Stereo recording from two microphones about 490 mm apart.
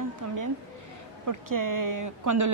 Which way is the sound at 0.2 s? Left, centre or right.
Right.